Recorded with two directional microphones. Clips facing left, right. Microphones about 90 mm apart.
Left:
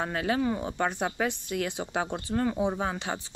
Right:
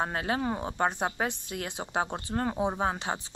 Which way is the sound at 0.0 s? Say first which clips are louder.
Left 2 dB; 30° right (ahead or behind).